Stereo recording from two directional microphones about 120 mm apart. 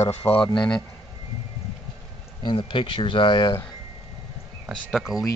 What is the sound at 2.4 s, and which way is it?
Speech, 40° left (ahead or behind).